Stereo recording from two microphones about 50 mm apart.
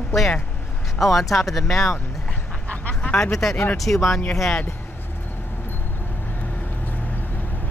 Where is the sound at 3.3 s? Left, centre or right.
Centre.